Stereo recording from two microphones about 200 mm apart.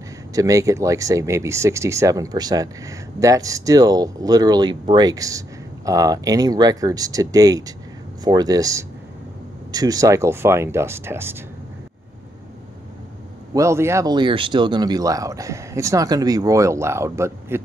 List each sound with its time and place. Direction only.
0.3 s speech: 15° right (ahead or behind)
13.5 s speech: 15° right (ahead or behind)